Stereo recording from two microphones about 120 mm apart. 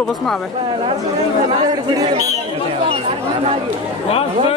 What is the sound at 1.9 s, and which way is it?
Speech, 30° right (ahead or behind).